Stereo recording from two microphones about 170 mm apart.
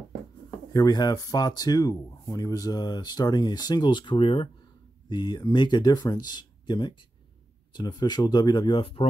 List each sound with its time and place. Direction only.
0.7 s speech: 20° left (ahead or behind)